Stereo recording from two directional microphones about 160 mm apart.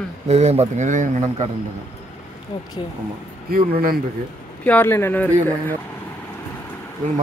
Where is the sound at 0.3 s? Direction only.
40° right (ahead or behind).